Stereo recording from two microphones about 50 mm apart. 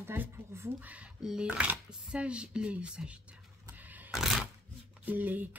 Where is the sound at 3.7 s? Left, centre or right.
Right.